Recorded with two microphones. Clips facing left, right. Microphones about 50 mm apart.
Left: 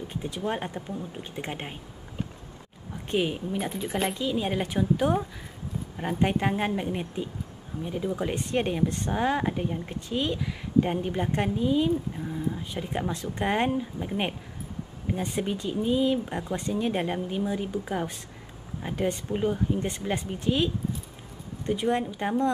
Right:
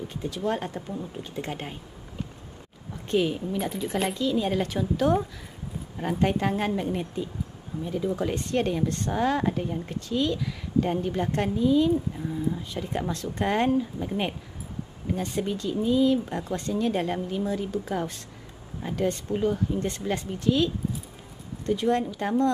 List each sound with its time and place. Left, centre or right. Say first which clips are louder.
0.1 s a woman's voice: right 2 dB; left
3.1 s a woman's voice: right 2 dB; centre